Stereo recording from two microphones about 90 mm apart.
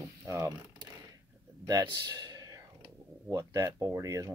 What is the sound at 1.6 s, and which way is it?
A man's voice, 45° right (ahead or behind).